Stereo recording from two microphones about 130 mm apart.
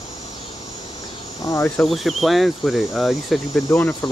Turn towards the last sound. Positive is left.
turn(degrees=25)  # may be behind; listen again after turning